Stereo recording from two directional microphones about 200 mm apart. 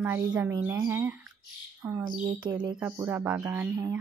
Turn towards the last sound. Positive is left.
turn(degrees=-15)  # may be behind; listen again after turning